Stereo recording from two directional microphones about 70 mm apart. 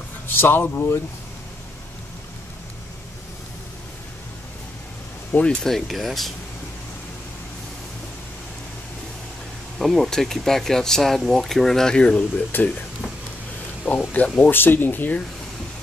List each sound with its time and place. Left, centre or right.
0.3 s speech: left
5.3 s speech: centre
9.8 s speech: centre
12.5 s speech: left
13.8 s speech: centre
14.5 s speech: left